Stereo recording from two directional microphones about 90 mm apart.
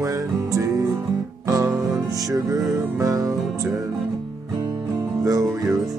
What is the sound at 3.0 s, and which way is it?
Music, 40° right (ahead or behind).